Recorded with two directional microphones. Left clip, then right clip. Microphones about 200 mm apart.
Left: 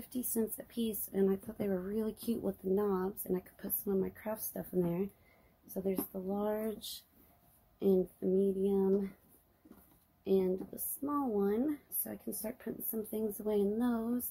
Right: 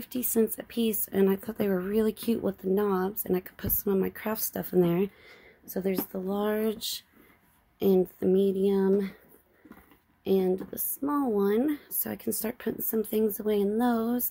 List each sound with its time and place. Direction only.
0.1 s speech: 30° right (ahead or behind)
8.3 s speech: 55° right (ahead or behind)
10.2 s speech: 35° right (ahead or behind)